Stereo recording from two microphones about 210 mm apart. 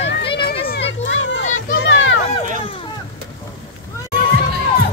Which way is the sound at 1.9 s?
65° left (ahead or behind).